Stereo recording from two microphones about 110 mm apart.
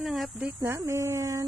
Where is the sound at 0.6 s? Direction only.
25° right (ahead or behind).